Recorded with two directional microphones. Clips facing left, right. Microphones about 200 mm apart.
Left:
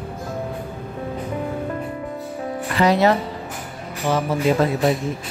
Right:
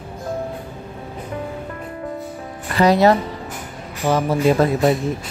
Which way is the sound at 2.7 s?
40° right (ahead or behind).